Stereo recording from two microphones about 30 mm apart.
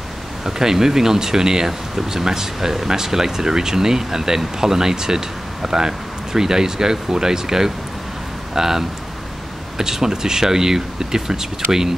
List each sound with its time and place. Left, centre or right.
0.5 s speech: centre